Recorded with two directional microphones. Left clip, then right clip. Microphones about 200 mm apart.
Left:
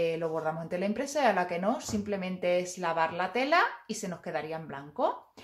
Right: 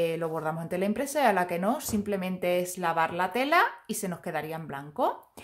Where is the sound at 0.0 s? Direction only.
35° right (ahead or behind).